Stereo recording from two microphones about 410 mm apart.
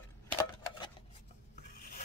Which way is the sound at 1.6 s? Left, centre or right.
Centre.